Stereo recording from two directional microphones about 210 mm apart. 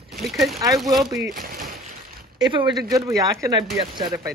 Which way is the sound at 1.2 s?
40° right (ahead or behind).